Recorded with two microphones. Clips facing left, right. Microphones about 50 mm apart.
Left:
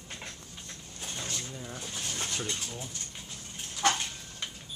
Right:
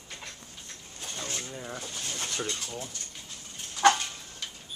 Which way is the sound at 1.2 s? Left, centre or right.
Right.